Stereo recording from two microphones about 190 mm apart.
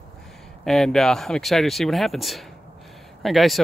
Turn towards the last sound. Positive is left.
turn(degrees=0)  # may be behind; listen again after turning